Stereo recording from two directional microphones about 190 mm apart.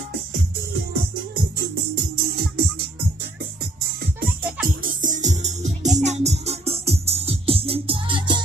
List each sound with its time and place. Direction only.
2.0 s music: 55° right (ahead or behind)
4.6 s music: 45° right (ahead or behind); by 8.4 s 25° right (ahead or behind)